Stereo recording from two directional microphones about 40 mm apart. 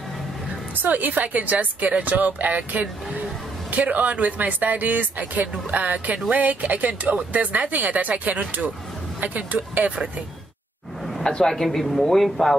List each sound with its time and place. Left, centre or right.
0.8 s speech: right
11.2 s speech: centre